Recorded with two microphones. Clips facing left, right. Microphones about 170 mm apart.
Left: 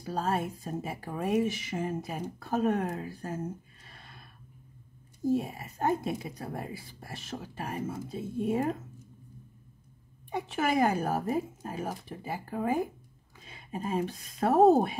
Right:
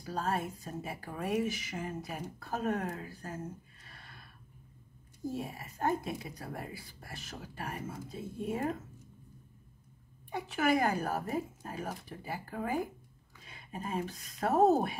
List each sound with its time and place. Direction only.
0.0 s speech: 25° left (ahead or behind)
5.3 s speech: 25° left (ahead or behind)
10.3 s speech: 25° left (ahead or behind)